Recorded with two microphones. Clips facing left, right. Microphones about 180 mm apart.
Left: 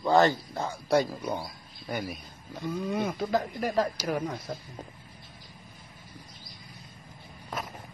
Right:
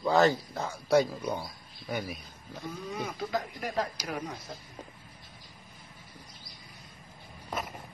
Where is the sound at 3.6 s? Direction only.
45° left (ahead or behind).